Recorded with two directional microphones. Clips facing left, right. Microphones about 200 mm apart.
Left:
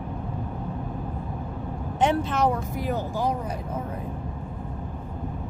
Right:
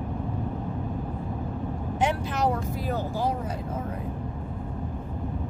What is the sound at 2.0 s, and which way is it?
Speech, 25° left (ahead or behind).